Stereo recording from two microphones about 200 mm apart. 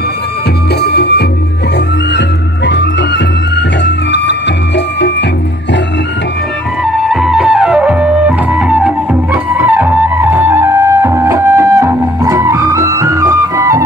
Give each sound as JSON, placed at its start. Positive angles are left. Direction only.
{"t": 0.7, "sound": "music", "side_deg": 55}
{"t": 6.8, "sound": "music", "side_deg": 0}